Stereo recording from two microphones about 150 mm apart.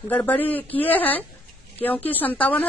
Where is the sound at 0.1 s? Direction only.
10° left (ahead or behind).